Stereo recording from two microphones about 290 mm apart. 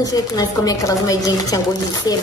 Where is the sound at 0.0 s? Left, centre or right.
Centre.